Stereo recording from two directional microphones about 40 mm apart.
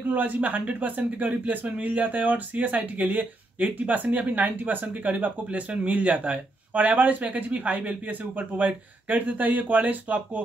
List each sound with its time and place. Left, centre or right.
0.1 s speech: right